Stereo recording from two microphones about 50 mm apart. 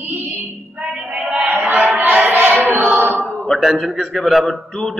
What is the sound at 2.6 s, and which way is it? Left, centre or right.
Choir, right.